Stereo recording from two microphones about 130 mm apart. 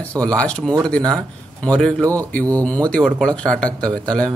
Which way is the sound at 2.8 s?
5° left (ahead or behind).